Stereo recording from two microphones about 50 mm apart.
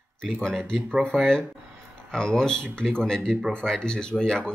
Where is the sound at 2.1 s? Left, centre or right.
Centre.